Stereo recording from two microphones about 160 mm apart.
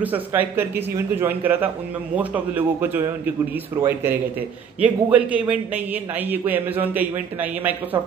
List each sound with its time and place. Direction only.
0.0 s a man's voice: 10° right (ahead or behind)